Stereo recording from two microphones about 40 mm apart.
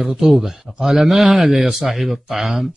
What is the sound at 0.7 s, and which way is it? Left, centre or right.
Speech, centre.